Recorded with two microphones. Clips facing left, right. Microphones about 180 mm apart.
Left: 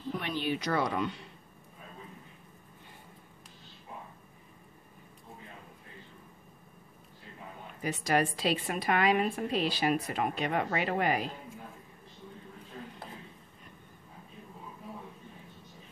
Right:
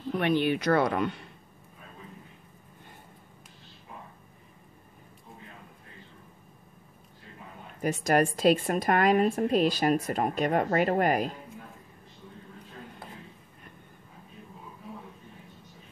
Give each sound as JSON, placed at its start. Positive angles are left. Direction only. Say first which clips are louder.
{"t": 0.2, "sound": "speech", "louder": "right 10 dB", "side_deg": -60}
{"t": 7.8, "sound": "a woman's voice", "louder": "right 4 dB", "side_deg": -45}